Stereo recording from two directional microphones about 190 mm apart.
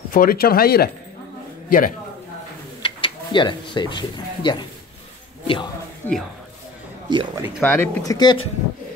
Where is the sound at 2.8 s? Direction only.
25° left (ahead or behind).